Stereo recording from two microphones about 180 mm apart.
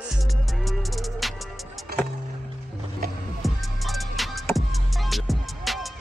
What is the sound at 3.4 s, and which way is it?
Music, centre (ahead or behind).